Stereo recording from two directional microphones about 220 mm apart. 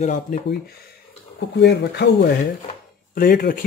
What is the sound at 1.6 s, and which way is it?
Speech, 50° left (ahead or behind).